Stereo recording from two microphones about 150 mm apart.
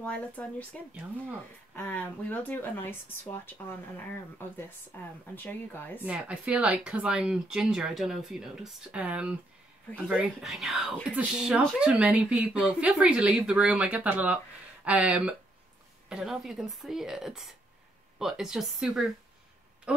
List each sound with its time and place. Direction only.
0.0 s speech: 10° left (ahead or behind)
6.0 s speech: 5° right (ahead or behind)